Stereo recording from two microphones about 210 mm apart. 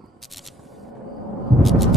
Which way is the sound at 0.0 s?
Centre (ahead or behind).